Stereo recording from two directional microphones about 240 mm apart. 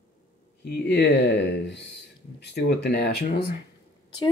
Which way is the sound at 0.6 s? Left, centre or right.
Left.